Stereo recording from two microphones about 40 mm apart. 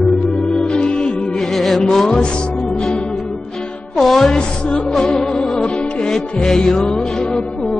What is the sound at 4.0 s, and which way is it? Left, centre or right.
Music, centre.